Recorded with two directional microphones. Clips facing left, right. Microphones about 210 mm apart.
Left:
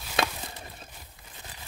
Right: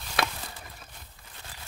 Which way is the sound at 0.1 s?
25° left (ahead or behind).